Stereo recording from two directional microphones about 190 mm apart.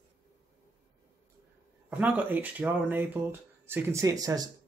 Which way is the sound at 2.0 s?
5° right (ahead or behind).